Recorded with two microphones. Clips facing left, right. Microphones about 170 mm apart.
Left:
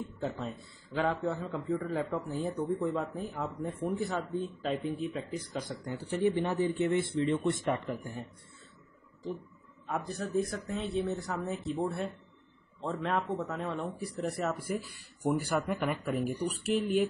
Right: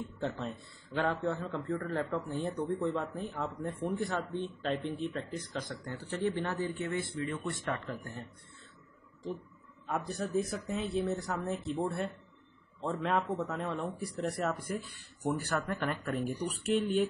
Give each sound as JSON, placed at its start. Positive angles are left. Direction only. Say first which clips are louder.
{"t": 0.2, "sound": "speech", "louder": "even", "side_deg": 0}
{"t": 9.8, "sound": "speech", "louder": "even", "side_deg": 0}